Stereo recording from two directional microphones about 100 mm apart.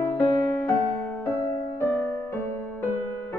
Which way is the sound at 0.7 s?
5° left (ahead or behind).